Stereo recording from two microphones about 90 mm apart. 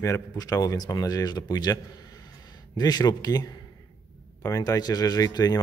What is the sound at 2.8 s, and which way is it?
Speech, 50° left (ahead or behind).